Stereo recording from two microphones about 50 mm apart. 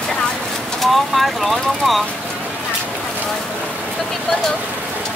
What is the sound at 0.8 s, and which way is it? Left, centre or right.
Vehicle, centre.